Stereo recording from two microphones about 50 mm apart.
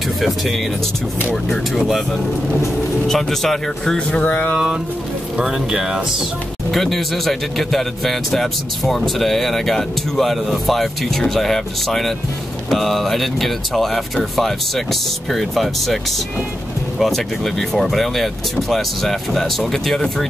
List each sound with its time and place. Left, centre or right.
1.8 s a man's voice: centre
3.1 s speech: centre
4.1 s a sound: left
5.4 s speech: centre
6.7 s a man's voice: centre
17.0 s a man's voice: centre